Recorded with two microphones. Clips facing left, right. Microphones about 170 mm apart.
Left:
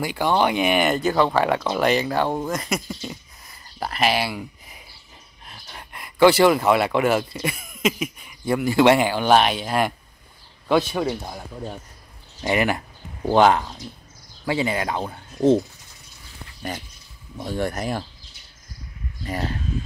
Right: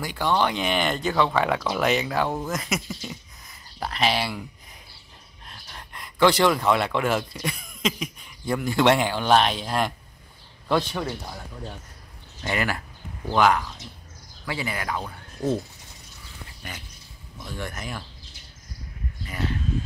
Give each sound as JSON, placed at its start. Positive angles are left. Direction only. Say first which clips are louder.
{"t": 0.0, "sound": "speech", "louder": "left 3 dB", "side_deg": 10}
{"t": 17.4, "sound": "speech", "louder": "left 9 dB", "side_deg": 35}
{"t": 19.2, "sound": "speech", "louder": "left 3 dB", "side_deg": 35}